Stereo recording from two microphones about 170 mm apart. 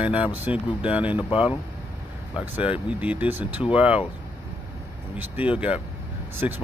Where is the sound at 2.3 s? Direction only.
10° right (ahead or behind).